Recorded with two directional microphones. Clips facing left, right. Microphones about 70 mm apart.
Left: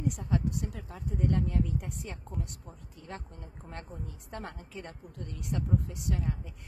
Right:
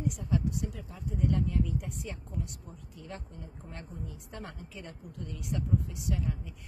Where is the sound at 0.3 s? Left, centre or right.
Left.